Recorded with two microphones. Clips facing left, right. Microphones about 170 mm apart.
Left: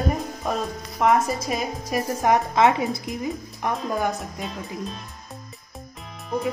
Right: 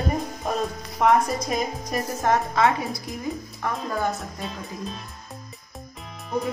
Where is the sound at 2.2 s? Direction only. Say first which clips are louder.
Left 2 dB; 20° left (ahead or behind).